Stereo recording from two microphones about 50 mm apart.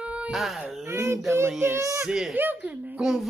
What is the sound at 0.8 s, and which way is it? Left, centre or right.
Speech, right.